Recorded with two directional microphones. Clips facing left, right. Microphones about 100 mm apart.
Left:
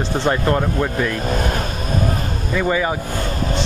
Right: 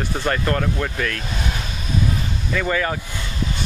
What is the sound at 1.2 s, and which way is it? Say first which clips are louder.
Speech: left 7 dB; 45° left (ahead or behind).